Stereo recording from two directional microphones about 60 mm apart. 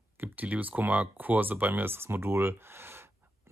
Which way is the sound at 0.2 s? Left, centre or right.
Right.